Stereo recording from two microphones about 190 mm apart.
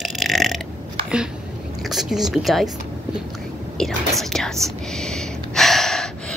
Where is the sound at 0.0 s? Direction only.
Centre (ahead or behind).